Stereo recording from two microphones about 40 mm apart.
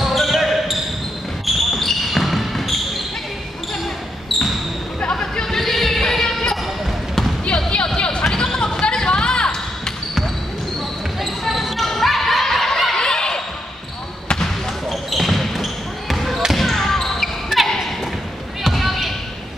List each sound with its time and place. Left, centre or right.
0.0 s basketball bounce: centre
4.3 s basketball bounce: centre
5.1 s a sound: centre
5.6 s music: centre
7.4 s a sound: left
8.8 s basketball bounce: left
11.1 s basketball bounce: centre
14.4 s basketball bounce: centre
18.6 s basketball bounce: centre